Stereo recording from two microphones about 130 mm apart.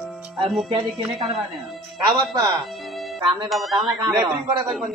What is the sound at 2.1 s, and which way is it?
Speech, 30° right (ahead or behind).